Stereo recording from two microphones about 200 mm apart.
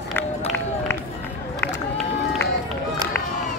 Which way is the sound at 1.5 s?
10° left (ahead or behind).